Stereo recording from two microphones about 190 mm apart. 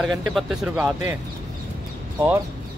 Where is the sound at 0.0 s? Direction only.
Centre (ahead or behind).